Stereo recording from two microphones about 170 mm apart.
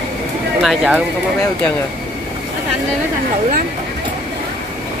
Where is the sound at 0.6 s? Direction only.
Centre (ahead or behind).